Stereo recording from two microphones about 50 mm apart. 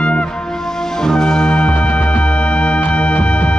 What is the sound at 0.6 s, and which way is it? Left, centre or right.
Music, centre.